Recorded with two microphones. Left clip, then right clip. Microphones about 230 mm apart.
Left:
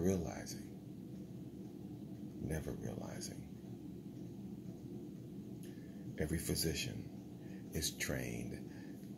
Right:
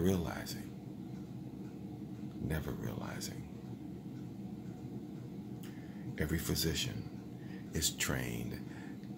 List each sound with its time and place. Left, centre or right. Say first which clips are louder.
0.0 s speech: right 3 dB; centre
6.1 s speech: right 3 dB; centre